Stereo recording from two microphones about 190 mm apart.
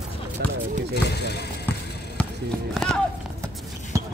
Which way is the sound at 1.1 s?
60° left (ahead or behind).